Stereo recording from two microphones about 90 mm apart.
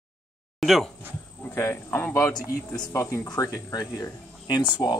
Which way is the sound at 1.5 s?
30° left (ahead or behind).